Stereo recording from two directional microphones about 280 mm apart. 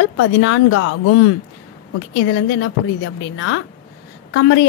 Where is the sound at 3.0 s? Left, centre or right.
Left.